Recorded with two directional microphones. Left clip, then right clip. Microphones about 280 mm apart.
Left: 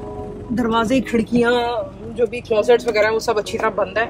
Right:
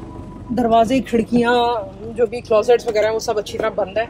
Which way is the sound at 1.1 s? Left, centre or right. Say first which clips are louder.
Right 1 dB; centre.